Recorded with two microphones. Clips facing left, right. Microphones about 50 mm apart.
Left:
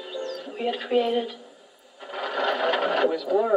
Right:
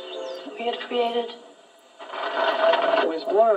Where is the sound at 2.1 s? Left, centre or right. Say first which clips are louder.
Right 2 dB; centre.